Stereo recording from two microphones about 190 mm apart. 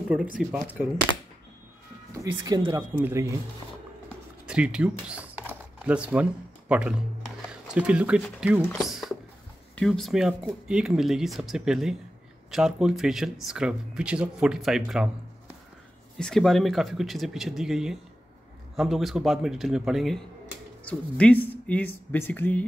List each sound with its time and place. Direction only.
0.4 s speech: 5° right (ahead or behind)
2.1 s speech: 20° right (ahead or behind)
4.5 s speech: 5° right (ahead or behind)
14.9 s a sound: 5° right (ahead or behind)
16.2 s speech: 5° left (ahead or behind)